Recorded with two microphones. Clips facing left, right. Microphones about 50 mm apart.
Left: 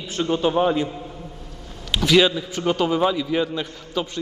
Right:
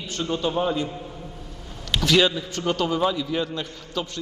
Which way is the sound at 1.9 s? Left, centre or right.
Centre.